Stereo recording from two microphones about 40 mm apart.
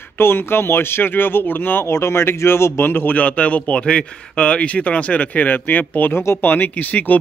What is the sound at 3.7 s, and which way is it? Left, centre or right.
Speech, left.